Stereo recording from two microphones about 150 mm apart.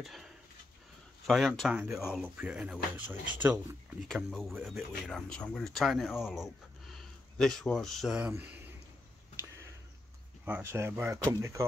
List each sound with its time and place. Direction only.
0.0 s a sound: centre (ahead or behind)
1.2 s speech: centre (ahead or behind)
4.1 s speech: centre (ahead or behind)
10.4 s speech: 15° right (ahead or behind)